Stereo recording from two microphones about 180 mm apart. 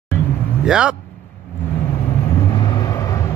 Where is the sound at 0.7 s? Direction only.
5° right (ahead or behind).